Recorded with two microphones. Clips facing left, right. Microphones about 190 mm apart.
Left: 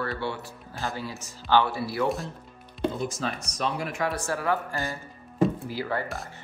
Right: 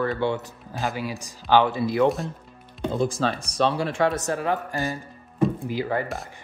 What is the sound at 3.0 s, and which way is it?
Speech, 30° right (ahead or behind).